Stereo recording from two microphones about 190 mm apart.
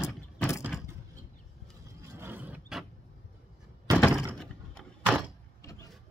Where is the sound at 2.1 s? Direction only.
10° right (ahead or behind).